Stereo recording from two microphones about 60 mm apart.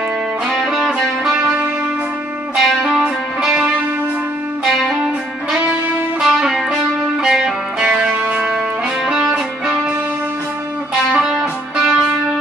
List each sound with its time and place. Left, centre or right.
0.5 s music: centre
11.1 s music: centre